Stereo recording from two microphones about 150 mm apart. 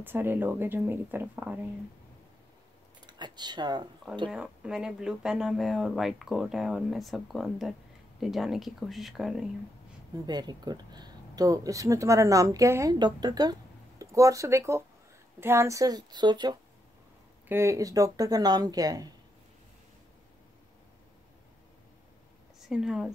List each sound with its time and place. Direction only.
0.0 s speech: 15° right (ahead or behind)
3.1 s speech: 30° right (ahead or behind)
4.3 s speech: 5° right (ahead or behind)
10.1 s speech: 25° right (ahead or behind)
17.5 s speech: 20° right (ahead or behind)
22.7 s speech: 5° right (ahead or behind)